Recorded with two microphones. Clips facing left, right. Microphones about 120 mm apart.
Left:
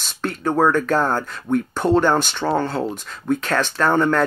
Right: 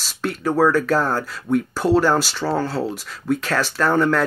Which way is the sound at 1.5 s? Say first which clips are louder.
Even; 20° left (ahead or behind).